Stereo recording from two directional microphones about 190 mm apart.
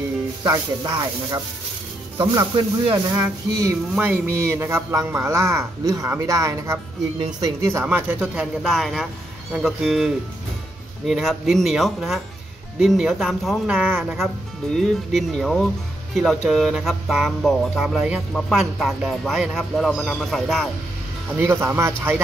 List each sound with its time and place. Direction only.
0.4 s a man's voice: 20° right (ahead or behind); by 20.7 s centre (ahead or behind)
21.4 s a man's voice: 15° right (ahead or behind)